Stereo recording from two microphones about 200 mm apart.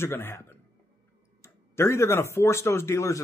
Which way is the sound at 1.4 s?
10° left (ahead or behind).